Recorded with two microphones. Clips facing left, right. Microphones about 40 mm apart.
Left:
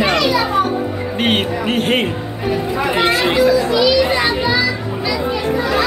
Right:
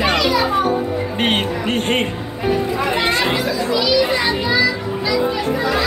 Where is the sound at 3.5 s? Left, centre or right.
Left.